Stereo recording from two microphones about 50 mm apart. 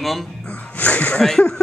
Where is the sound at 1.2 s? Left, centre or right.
Centre.